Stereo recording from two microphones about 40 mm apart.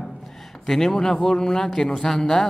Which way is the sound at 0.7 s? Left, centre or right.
Centre.